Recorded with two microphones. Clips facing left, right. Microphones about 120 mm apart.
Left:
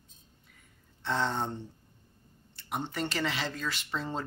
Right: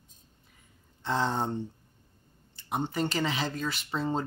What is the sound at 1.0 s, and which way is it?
Speech, 10° right (ahead or behind).